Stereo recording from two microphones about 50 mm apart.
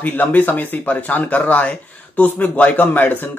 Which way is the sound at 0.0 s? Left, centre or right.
Left.